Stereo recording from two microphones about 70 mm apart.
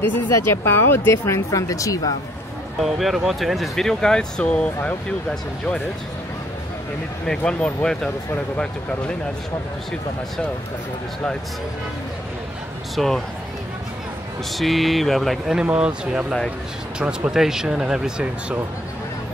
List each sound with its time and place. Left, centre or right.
0.3 s speech: left
2.8 s speech: centre
7.2 s speech: centre
12.9 s speech: centre
14.6 s speech: centre
15.5 s speech: centre